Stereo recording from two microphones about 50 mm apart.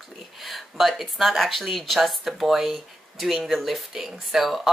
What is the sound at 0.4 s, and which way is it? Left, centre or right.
Speech, centre.